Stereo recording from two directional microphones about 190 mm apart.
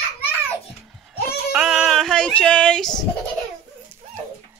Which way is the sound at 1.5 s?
5° right (ahead or behind).